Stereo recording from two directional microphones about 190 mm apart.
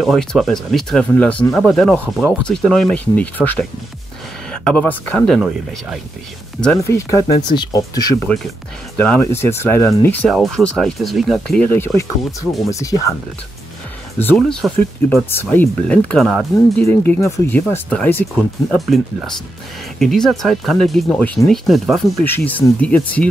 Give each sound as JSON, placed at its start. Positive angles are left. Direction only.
{"t": 0.0, "sound": "speech", "side_deg": 0}
{"t": 7.4, "sound": "speech", "side_deg": 20}
{"t": 10.2, "sound": "speech", "side_deg": 0}
{"t": 14.2, "sound": "speech", "side_deg": 5}